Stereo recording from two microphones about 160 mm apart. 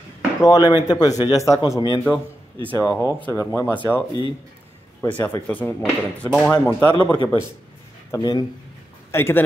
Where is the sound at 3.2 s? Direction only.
15° left (ahead or behind).